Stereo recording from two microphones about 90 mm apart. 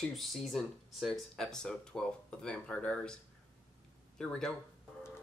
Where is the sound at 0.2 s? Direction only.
Centre (ahead or behind).